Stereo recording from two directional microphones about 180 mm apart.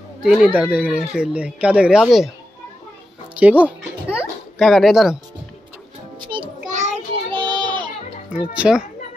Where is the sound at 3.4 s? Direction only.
10° right (ahead or behind).